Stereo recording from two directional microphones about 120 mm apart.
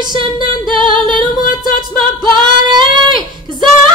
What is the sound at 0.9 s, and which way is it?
Music, 40° right (ahead or behind).